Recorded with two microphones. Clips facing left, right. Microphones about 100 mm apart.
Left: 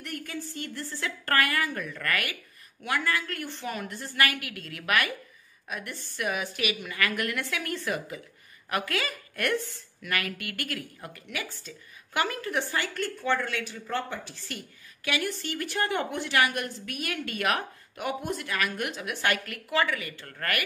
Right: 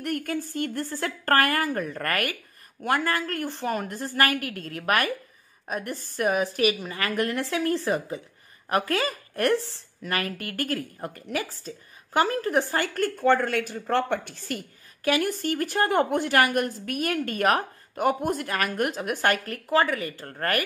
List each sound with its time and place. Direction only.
0.0 s a woman's voice: 50° right (ahead or behind)
15.0 s a woman's voice: 45° right (ahead or behind)